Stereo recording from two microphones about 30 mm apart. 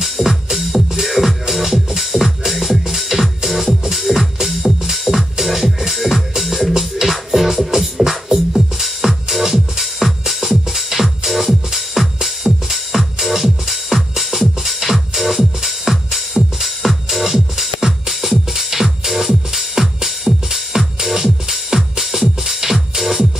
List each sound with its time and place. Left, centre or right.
0.0 s music: centre